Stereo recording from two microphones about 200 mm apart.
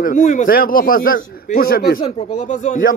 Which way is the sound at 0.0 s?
40° left (ahead or behind).